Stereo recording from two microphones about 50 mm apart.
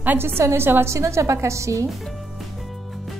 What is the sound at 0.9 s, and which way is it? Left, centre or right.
Speech, right.